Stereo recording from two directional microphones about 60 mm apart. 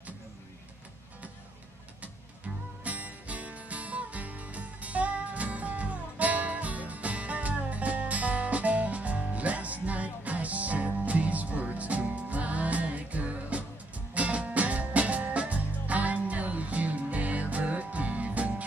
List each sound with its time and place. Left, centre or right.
2.8 s music: right